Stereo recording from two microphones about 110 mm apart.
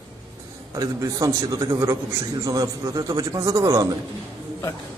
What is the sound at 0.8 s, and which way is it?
A man's voice, 30° right (ahead or behind).